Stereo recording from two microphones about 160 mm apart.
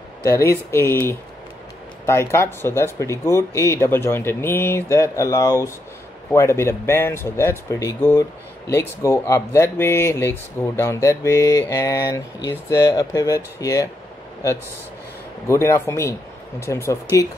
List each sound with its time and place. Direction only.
0.5 s speech: 15° left (ahead or behind)
15.4 s speech: 20° left (ahead or behind)